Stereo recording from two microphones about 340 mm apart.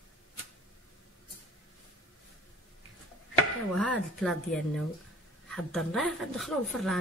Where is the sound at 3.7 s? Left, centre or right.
Centre.